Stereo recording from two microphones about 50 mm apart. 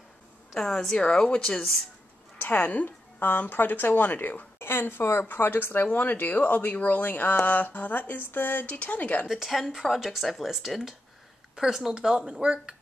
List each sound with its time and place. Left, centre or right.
0.6 s a woman's voice: centre
2.4 s speech: left
4.6 s a woman's voice: left
9.3 s a woman's voice: centre